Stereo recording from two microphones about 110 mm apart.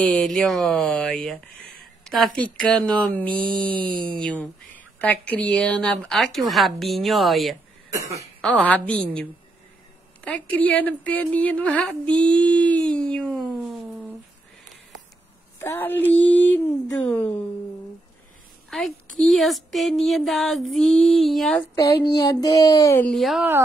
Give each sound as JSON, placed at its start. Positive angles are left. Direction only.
{"t": 0.0, "sound": "a woman's voice", "side_deg": 10}
{"t": 8.4, "sound": "a woman's voice", "side_deg": 10}
{"t": 15.6, "sound": "a woman's voice", "side_deg": 20}
{"t": 18.7, "sound": "a woman's voice", "side_deg": 0}
{"t": 21.7, "sound": "child singing", "side_deg": 35}
{"t": 23.1, "sound": "a woman's voice", "side_deg": 0}